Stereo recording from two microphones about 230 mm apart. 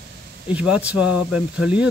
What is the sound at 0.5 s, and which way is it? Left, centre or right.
Speech, centre.